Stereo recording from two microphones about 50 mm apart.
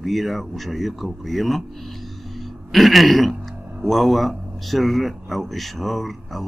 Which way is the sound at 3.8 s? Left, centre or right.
Centre.